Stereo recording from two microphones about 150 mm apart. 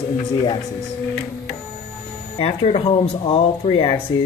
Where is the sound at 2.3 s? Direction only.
40° left (ahead or behind).